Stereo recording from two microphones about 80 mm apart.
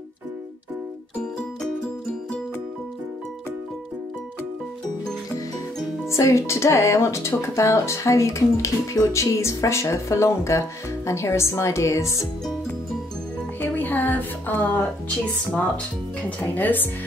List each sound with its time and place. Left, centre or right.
6.0 s speech: left
13.6 s music: left
16.2 s speech: centre